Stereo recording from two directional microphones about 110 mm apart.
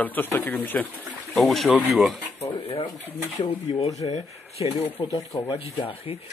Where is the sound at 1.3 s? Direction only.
Centre (ahead or behind).